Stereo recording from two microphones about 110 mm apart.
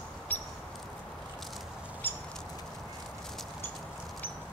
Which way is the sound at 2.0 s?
20° left (ahead or behind).